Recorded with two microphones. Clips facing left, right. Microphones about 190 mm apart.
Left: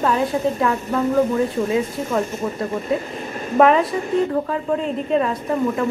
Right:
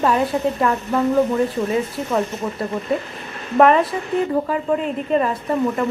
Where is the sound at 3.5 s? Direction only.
Centre (ahead or behind).